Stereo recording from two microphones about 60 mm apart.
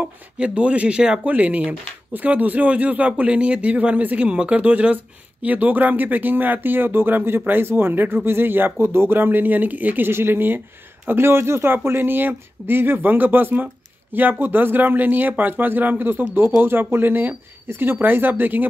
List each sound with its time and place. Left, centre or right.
0.0 s speech: right